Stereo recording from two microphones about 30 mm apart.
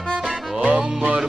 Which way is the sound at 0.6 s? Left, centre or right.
Right.